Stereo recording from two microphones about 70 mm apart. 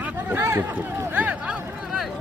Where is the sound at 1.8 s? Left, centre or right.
Centre.